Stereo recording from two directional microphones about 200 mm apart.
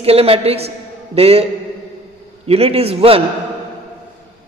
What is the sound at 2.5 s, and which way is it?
Speech, 30° right (ahead or behind).